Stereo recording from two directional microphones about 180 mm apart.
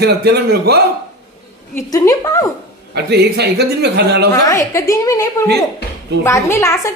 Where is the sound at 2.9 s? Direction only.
65° right (ahead or behind).